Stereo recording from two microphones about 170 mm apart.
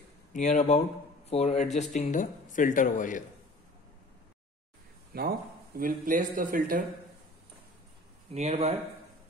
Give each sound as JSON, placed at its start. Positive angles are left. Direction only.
{"t": 0.3, "sound": "speech", "side_deg": 45}
{"t": 5.1, "sound": "speech", "side_deg": -65}
{"t": 5.8, "sound": "speech", "side_deg": -55}
{"t": 8.3, "sound": "speech", "side_deg": -40}